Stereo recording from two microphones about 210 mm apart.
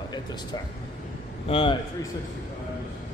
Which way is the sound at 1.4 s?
25° left (ahead or behind).